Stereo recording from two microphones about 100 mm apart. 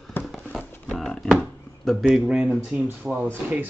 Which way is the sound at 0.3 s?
5° right (ahead or behind).